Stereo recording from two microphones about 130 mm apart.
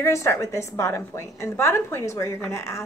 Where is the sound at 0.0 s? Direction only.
20° left (ahead or behind).